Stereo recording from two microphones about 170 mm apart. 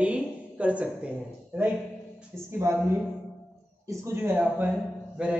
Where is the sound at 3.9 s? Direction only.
15° right (ahead or behind).